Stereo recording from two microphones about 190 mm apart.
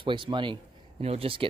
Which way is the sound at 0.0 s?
25° right (ahead or behind).